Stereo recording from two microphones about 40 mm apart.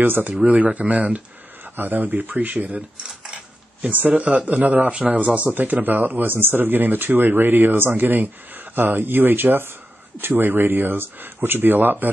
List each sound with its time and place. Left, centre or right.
0.0 s speech: right
0.4 s speech: right
3.9 s speech: right
4.2 s speech: right
4.5 s speech: right